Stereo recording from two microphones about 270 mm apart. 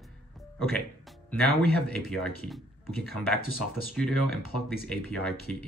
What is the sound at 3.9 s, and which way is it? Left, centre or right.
Speech, centre.